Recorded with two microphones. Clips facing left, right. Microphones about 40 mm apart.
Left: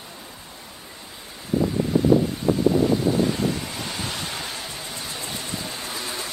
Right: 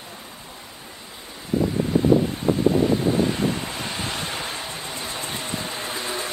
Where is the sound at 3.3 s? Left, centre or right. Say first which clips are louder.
Right 1 dB; right.